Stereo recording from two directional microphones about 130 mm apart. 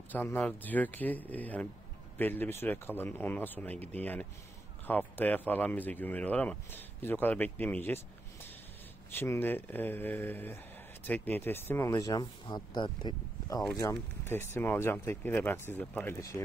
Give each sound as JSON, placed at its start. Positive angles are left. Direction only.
{"t": 0.1, "sound": "speech", "side_deg": 15}
{"t": 9.1, "sound": "speech", "side_deg": 15}
{"t": 13.7, "sound": "speech", "side_deg": 20}